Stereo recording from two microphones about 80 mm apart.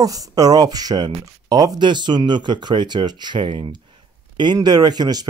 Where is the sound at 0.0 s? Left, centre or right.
Right.